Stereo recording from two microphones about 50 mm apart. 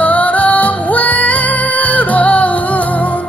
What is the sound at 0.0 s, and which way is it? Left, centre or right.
Music, left.